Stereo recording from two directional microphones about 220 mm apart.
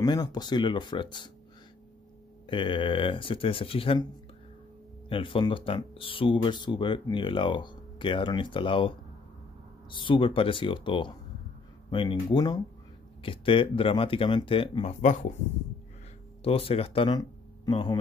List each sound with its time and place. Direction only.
0.0 s speech: 20° left (ahead or behind)
2.4 s speech: 20° left (ahead or behind)
5.1 s speech: 25° left (ahead or behind)
16.4 s speech: 25° left (ahead or behind)